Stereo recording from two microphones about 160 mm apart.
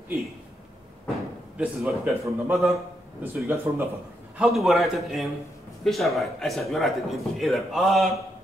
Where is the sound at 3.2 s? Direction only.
15° right (ahead or behind).